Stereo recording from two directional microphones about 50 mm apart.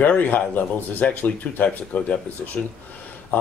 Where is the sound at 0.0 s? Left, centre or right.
Left.